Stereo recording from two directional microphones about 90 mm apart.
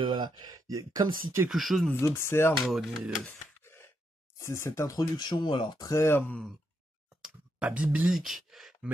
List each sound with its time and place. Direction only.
0.0 s speech: 55° right (ahead or behind)
1.5 s speech: centre (ahead or behind)
1.9 s speech: 30° left (ahead or behind)
2.6 s speech: centre (ahead or behind)
4.4 s speech: 30° left (ahead or behind)
4.9 s speech: 50° left (ahead or behind)
5.9 s speech: 30° left (ahead or behind)
7.2 s a sound: 10° right (ahead or behind)
8.1 s speech: centre (ahead or behind)